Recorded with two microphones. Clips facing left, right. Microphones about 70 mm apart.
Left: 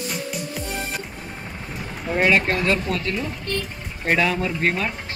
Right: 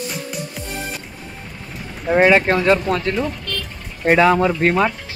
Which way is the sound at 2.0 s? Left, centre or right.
Right.